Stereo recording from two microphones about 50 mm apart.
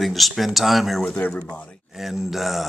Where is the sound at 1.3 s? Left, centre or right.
Centre.